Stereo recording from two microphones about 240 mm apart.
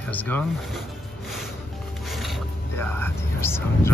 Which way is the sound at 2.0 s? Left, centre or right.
Centre.